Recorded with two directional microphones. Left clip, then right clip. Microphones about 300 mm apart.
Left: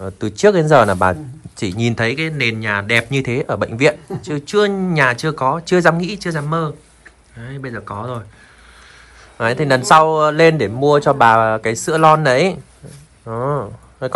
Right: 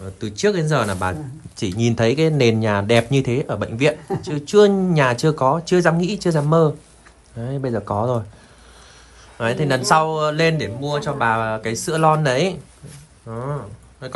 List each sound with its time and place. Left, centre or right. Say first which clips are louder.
0.0 s speech: left 7 dB; centre
9.4 s speech: left 5 dB; centre